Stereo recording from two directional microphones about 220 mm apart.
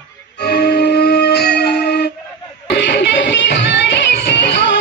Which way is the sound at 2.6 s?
50° left (ahead or behind).